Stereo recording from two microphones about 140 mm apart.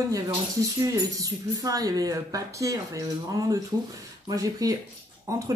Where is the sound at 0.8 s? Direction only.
25° right (ahead or behind).